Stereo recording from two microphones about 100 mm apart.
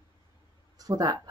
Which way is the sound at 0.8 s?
40° right (ahead or behind).